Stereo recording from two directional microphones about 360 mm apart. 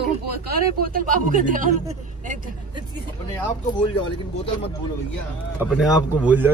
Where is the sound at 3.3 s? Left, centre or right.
Centre.